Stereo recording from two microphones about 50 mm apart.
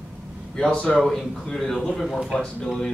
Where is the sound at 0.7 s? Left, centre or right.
Left.